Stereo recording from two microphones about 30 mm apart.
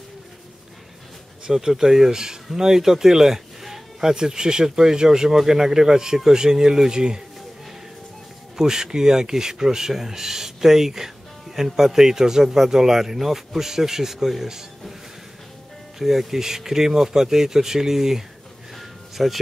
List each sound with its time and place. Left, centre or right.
1.5 s speech: centre
8.5 s speech: centre
16.0 s speech: centre
18.8 s a sound: centre